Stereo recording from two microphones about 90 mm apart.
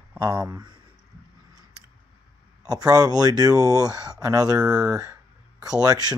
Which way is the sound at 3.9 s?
10° right (ahead or behind).